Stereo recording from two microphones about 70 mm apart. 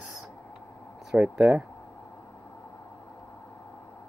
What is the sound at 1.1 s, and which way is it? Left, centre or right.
Speech, centre.